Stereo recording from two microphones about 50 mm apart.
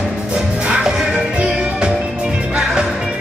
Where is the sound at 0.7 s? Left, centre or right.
Centre.